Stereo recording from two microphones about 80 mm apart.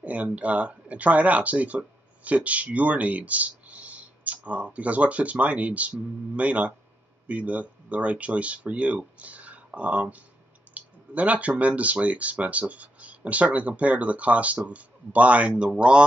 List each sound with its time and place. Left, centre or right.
0.0 s speech: centre